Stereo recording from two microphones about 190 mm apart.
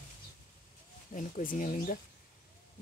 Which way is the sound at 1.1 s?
45° left (ahead or behind).